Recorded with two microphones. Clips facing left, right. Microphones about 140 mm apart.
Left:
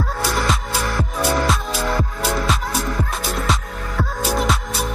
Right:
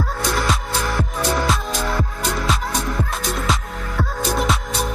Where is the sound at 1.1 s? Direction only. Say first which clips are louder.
Left 2 dB; centre (ahead or behind).